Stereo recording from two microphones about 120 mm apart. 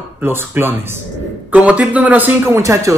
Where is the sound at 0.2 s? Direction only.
20° right (ahead or behind).